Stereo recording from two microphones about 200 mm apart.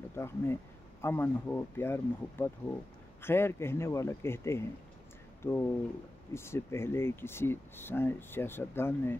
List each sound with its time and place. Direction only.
0.1 s speech: 10° left (ahead or behind)